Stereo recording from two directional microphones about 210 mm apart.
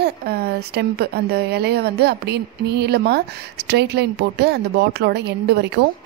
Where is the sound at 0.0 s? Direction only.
50° right (ahead or behind).